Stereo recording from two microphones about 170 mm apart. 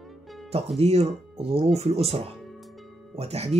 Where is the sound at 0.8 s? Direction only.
35° right (ahead or behind).